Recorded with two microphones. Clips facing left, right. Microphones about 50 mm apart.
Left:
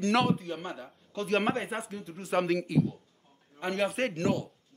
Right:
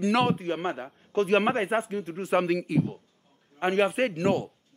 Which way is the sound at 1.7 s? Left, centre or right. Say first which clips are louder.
Right 9 dB; right.